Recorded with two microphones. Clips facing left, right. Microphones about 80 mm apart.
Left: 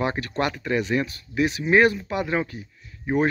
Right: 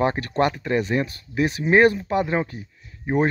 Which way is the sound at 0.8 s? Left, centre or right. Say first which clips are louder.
Right 1 dB; right.